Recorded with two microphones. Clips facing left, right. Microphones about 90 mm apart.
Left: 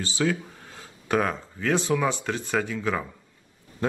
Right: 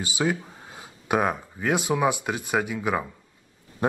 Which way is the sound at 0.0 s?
15° right (ahead or behind).